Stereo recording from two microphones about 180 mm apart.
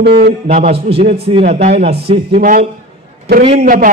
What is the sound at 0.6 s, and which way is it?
Speech, 35° right (ahead or behind).